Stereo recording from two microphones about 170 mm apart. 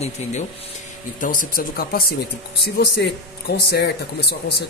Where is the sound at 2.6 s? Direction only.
90° left.